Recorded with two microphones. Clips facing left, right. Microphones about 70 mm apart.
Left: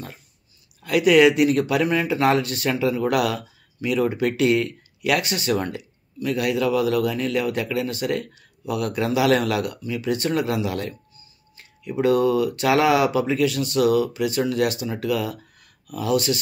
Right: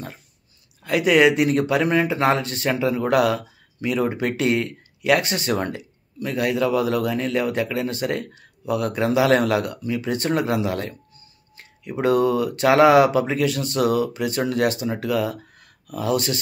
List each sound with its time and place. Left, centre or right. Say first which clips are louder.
0.8 s speech: left 1 dB; right